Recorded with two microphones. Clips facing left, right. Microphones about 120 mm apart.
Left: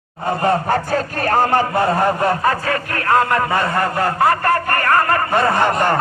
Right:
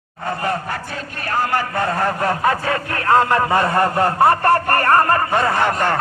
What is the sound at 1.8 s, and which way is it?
Speech, 15° left (ahead or behind).